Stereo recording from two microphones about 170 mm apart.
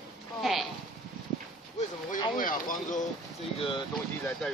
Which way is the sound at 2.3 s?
50° left (ahead or behind).